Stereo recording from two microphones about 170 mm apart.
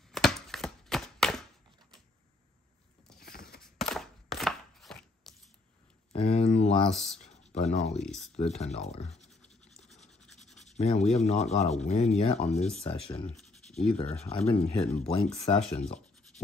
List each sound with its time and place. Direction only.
0.1 s a sound: centre (ahead or behind)
3.3 s a sound: 65° left (ahead or behind)
3.6 s chopping: centre (ahead or behind)
6.1 s a sound: 35° left (ahead or behind)
6.9 s speech: centre (ahead or behind)
7.2 s speech: 40° left (ahead or behind)
8.0 s speech: centre (ahead or behind)
8.4 s speech: 40° left (ahead or behind)
9.3 s scratch: centre (ahead or behind)
10.8 s speech: 40° left (ahead or behind)
13.4 s scratch: centre (ahead or behind)
13.9 s speech: 40° left (ahead or behind)
15.6 s speech: 5° left (ahead or behind)